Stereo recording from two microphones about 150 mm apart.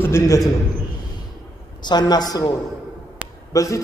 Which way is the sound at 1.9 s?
25° left (ahead or behind).